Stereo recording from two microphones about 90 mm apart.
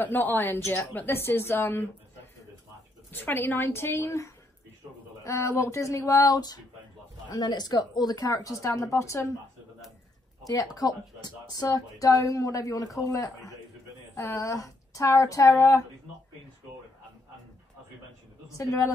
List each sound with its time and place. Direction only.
0.0 s a woman's voice: 20° left (ahead or behind)
3.1 s a woman's voice: 20° left (ahead or behind)
10.4 s a woman's voice: 45° left (ahead or behind)
18.6 s speech: 40° left (ahead or behind)